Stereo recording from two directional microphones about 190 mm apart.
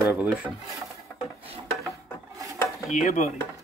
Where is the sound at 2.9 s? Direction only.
40° left (ahead or behind).